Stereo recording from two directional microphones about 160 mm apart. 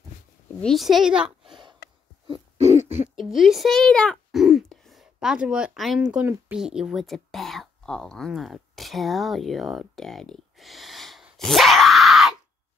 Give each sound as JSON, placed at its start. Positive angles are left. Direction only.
{"t": 0.6, "sound": "a woman's voice", "side_deg": 0}
{"t": 1.8, "sound": "a sound", "side_deg": 85}
{"t": 2.2, "sound": "owl", "side_deg": -35}
{"t": 3.2, "sound": "speech", "side_deg": 0}